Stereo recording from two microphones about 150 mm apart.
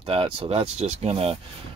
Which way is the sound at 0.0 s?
40° right (ahead or behind).